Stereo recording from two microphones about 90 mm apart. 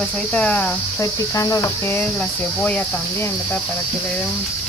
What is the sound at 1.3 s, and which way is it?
Cricket, 35° left (ahead or behind).